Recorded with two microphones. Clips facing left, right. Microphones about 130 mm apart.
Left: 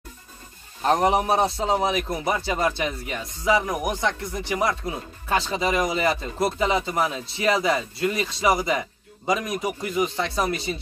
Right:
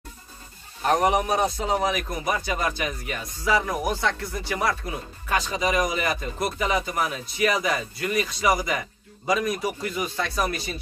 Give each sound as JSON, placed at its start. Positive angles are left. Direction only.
{"t": 0.8, "sound": "a man's voice", "side_deg": 30}